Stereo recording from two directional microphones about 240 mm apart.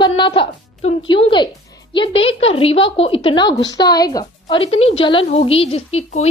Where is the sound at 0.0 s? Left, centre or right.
Centre.